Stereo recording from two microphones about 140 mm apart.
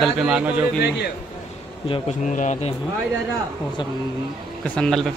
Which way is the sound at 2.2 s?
60° left (ahead or behind).